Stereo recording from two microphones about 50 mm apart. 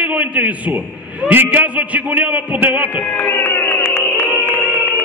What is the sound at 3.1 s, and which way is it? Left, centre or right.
Music, left.